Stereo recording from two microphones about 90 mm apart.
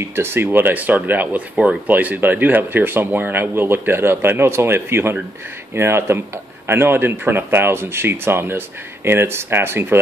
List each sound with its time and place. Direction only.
0.1 s speech: 25° right (ahead or behind)